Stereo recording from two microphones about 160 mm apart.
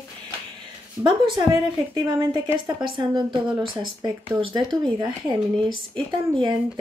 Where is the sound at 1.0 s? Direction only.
30° right (ahead or behind).